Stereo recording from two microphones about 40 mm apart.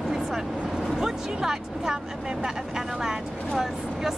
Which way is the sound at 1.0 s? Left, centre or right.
Centre.